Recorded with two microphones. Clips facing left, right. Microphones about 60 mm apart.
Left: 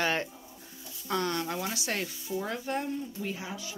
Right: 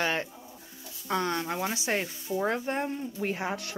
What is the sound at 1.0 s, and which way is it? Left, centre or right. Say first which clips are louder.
Speech: right 1 dB; centre.